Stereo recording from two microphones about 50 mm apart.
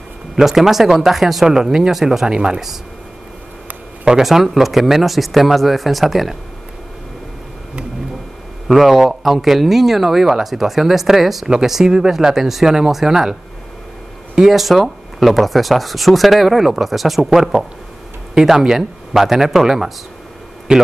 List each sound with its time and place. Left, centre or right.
0.4 s speech: centre
4.0 s speech: centre
8.6 s speech: centre
20.7 s speech: centre